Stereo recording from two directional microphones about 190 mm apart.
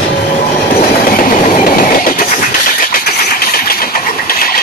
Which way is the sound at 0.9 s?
45° left (ahead or behind).